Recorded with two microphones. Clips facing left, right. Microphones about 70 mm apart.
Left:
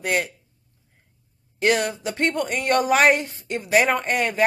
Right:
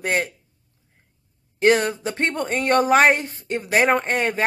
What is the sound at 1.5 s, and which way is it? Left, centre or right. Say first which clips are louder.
A woman's voice: right 3 dB; right.